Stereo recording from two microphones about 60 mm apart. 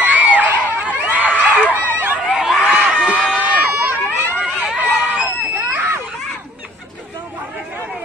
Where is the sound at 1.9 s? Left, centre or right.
Right.